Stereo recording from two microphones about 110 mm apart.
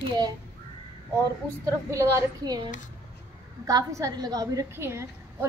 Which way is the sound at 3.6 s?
35° right (ahead or behind).